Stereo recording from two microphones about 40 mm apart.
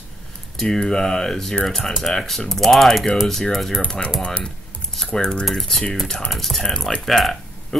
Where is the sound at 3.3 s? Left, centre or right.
Centre.